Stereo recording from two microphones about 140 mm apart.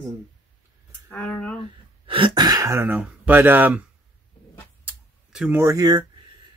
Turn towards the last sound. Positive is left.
turn(degrees=-25)  # may be behind; listen again after turning